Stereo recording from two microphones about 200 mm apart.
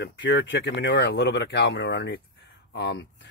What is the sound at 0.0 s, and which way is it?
Speech, 65° left (ahead or behind).